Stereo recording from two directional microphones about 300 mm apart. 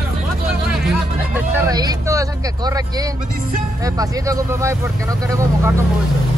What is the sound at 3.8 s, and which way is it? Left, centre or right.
Speech, centre.